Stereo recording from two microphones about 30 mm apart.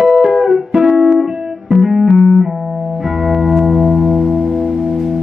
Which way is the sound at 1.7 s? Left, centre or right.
Centre.